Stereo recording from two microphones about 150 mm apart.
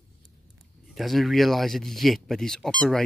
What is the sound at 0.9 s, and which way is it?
Speech, centre (ahead or behind).